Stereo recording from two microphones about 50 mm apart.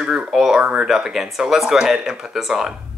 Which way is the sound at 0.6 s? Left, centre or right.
Right.